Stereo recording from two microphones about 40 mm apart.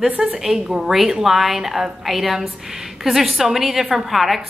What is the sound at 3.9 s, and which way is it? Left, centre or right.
Speech, centre.